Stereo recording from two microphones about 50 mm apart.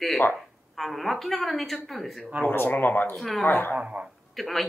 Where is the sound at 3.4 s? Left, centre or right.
Left.